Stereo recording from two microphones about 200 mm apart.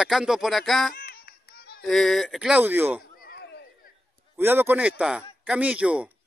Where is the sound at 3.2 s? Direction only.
50° left (ahead or behind).